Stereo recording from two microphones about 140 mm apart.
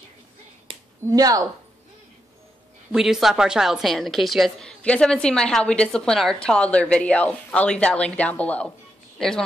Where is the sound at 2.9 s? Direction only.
5° right (ahead or behind).